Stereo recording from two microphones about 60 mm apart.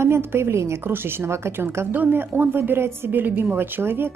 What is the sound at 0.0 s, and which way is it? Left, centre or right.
A woman's voice, right.